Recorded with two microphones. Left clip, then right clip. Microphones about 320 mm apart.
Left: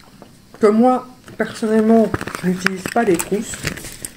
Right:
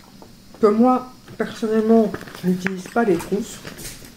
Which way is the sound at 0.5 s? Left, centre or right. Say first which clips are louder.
Left 2 dB; left.